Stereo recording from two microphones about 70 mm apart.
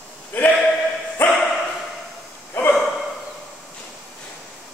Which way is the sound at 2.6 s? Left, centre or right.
Left.